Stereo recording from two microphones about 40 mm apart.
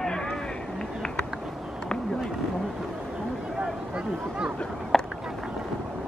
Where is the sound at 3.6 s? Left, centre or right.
Right.